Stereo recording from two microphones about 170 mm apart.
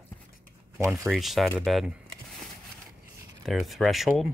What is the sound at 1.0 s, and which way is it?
Speech, centre (ahead or behind).